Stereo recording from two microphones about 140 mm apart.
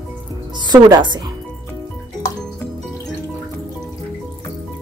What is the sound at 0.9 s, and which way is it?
Speech, 30° right (ahead or behind).